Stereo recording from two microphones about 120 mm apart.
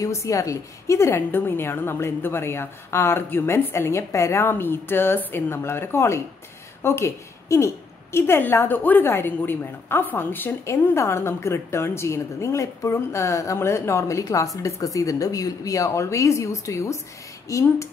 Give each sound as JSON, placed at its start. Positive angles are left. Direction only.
{"t": 0.0, "sound": "a woman's voice", "side_deg": 25}